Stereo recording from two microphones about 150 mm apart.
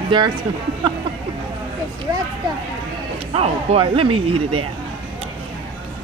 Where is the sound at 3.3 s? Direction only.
40° right (ahead or behind).